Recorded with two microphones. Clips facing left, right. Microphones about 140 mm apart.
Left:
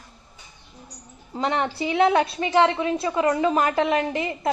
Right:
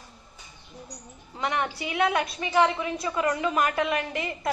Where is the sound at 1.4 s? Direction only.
30° left (ahead or behind).